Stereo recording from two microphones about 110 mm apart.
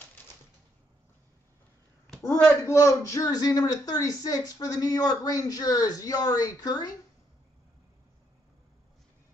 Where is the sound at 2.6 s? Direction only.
25° left (ahead or behind).